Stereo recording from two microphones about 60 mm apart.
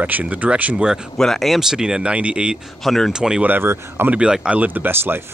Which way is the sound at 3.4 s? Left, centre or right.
Right.